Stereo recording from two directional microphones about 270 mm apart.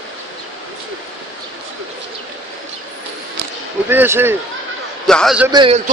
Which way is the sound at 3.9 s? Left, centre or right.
Centre.